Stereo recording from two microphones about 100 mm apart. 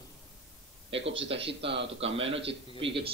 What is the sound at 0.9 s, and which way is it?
A man's voice, 70° right (ahead or behind).